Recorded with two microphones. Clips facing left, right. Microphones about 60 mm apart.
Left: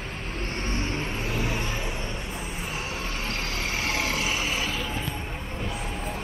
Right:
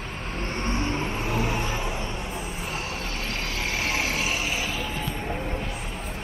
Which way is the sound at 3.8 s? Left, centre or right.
Right.